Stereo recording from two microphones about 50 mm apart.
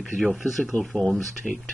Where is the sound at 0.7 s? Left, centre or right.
Centre.